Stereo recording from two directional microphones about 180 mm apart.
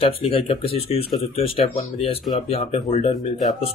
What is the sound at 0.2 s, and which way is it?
Speech, 30° left (ahead or behind).